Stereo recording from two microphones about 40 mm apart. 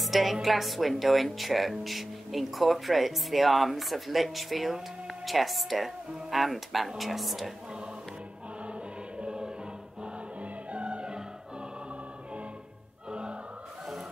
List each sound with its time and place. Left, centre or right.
0.0 s speech: centre
9.2 s choir: right
10.4 s music: right
13.1 s a sound: right